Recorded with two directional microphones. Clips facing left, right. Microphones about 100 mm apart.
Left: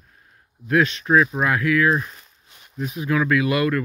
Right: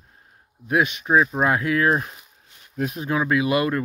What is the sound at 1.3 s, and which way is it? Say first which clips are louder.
Speech: left 1 dB; 25° right (ahead or behind).